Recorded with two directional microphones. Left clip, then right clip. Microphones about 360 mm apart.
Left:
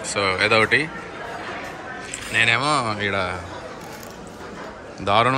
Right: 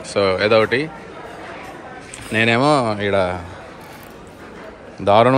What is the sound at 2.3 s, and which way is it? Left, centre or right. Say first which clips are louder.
Speech: right 3 dB; centre.